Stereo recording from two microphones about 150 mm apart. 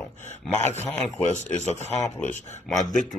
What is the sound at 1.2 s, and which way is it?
Speech, 50° left (ahead or behind).